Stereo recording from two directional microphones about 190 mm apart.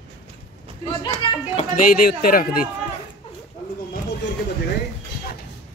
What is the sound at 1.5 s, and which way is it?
Speech, 45° left (ahead or behind).